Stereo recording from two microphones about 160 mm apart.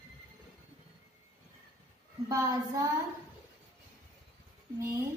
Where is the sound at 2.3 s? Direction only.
20° right (ahead or behind).